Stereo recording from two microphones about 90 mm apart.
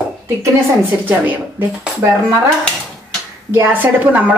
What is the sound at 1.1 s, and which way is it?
Speech, 25° right (ahead or behind).